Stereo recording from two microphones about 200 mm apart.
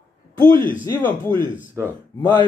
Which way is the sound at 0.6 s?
10° left (ahead or behind).